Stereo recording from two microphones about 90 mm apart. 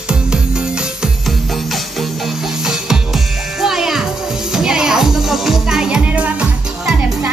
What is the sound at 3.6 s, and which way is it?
Music, 5° right (ahead or behind).